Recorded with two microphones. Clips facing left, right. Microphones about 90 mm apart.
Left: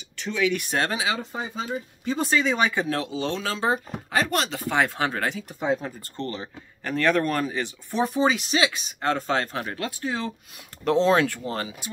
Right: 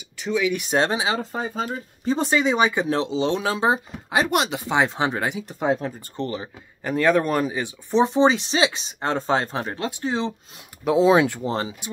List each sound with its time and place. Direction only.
0.2 s speech: 10° right (ahead or behind); by 1.2 s 25° right (ahead or behind)
1.3 s speech: 45° right (ahead or behind)
2.0 s speech: 25° right (ahead or behind)
10.8 s speech: 10° right (ahead or behind); by 11.9 s 25° right (ahead or behind)